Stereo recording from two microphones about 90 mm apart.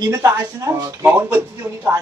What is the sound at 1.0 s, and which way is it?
Speech, 20° right (ahead or behind).